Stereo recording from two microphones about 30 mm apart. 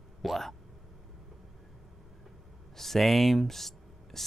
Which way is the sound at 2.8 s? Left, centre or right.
Centre.